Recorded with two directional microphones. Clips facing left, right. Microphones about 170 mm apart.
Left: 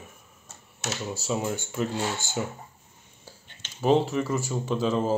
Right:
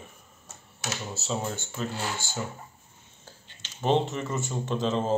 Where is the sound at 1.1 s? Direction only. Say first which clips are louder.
Left 3 dB; 10° left (ahead or behind).